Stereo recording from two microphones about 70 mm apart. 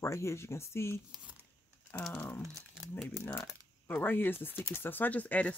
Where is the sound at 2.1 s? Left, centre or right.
Left.